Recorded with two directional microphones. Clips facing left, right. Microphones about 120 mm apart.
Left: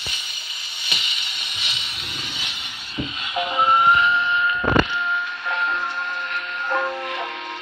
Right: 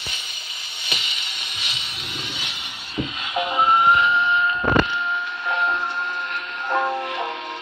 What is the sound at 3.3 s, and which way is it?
Music, 30° right (ahead or behind).